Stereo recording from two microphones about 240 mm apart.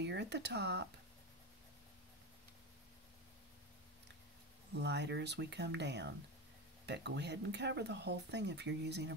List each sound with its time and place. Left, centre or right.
0.0 s speech: right
4.7 s speech: right